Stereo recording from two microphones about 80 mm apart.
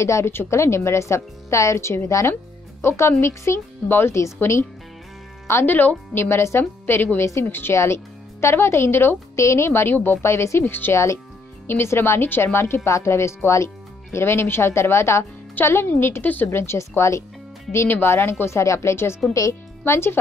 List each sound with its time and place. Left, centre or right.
0.0 s a woman's voice: left
16.4 s a woman's voice: left